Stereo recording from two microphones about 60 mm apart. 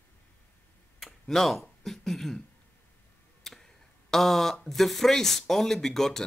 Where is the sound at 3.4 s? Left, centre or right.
Centre.